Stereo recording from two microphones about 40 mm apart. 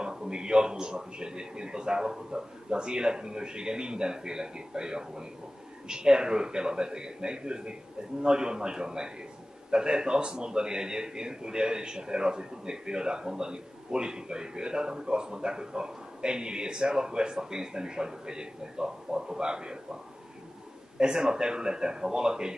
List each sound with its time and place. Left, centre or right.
0.0 s a man's voice: centre
21.0 s a man's voice: centre